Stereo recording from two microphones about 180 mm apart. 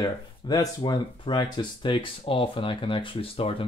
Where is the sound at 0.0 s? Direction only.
20° left (ahead or behind).